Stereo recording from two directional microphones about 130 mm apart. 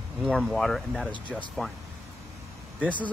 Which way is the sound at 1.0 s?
10° left (ahead or behind).